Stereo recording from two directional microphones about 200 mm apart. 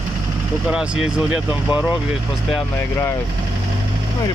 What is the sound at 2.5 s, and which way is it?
Speech, 10° left (ahead or behind).